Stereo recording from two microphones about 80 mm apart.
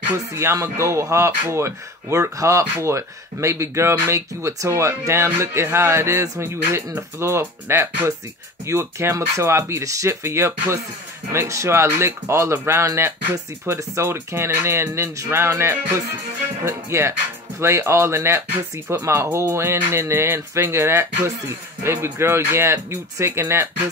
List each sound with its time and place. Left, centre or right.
0.3 s speech: right